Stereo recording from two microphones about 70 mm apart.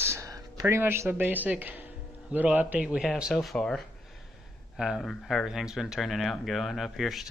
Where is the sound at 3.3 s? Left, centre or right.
Centre.